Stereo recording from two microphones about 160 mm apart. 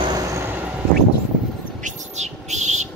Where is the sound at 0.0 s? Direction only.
25° right (ahead or behind).